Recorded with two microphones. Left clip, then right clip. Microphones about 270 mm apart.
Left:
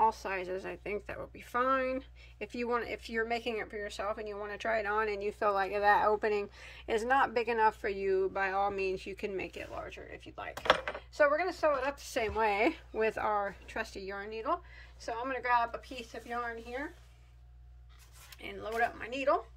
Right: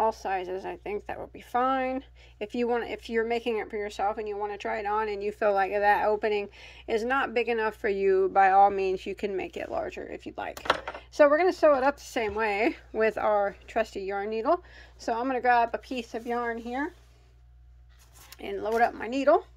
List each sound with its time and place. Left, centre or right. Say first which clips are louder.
0.0 s a woman's voice: right 3 dB; centre
9.8 s speech: right 10 dB; right
18.4 s speech: right 8 dB; centre